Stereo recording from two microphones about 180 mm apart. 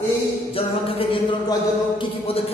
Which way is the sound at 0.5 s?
30° left (ahead or behind).